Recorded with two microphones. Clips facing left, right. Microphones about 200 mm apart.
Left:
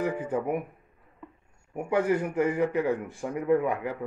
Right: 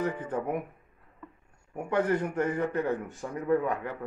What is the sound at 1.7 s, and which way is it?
A man's voice, 10° left (ahead or behind).